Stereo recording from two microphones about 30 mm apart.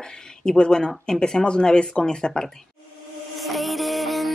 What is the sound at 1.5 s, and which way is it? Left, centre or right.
Speech, left.